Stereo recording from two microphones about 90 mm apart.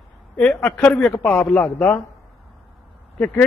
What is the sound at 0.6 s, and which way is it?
Speech, 20° left (ahead or behind).